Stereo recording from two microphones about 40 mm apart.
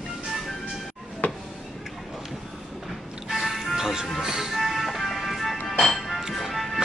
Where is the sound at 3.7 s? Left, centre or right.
Centre.